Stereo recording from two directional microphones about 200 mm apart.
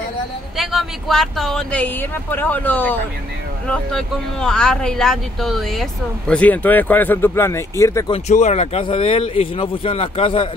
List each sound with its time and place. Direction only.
0.6 s speech: centre (ahead or behind); by 8.1 s 15° left (ahead or behind)
8.1 s speech: 35° left (ahead or behind)